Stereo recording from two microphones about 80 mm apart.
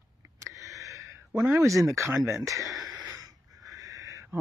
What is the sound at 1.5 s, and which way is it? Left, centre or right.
Speech, right.